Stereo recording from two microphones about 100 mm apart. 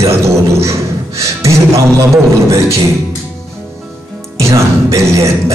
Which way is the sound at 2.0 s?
30° right (ahead or behind).